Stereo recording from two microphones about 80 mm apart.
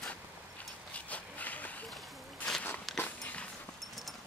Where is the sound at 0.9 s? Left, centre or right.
Centre.